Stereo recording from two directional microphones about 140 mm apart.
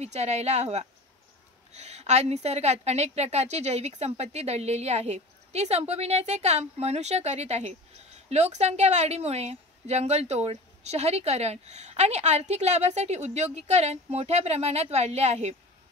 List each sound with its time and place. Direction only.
0.0 s a woman's voice: 50° right (ahead or behind)